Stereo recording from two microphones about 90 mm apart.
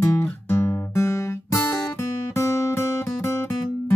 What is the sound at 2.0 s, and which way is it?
Music, 35° left (ahead or behind).